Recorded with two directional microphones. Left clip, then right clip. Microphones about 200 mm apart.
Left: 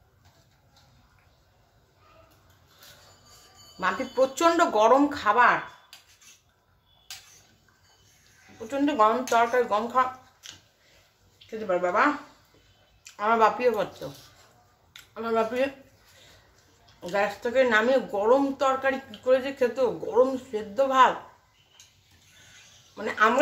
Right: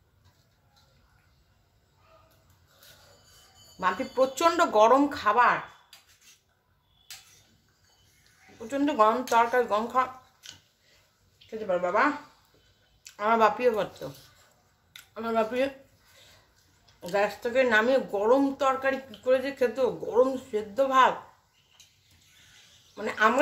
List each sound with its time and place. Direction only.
3.8 s speech: 20° right (ahead or behind)
8.5 s speech: 25° right (ahead or behind)
17.0 s speech: 25° right (ahead or behind)
22.9 s speech: 25° right (ahead or behind)